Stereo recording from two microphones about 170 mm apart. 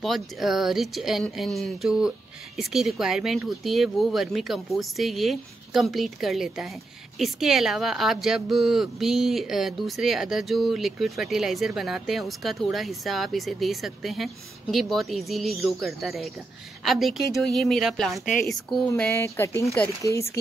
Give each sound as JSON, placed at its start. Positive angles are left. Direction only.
{"t": 0.0, "sound": "speech", "side_deg": 0}